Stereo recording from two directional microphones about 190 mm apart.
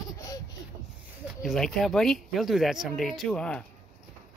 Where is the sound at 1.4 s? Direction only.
Centre (ahead or behind).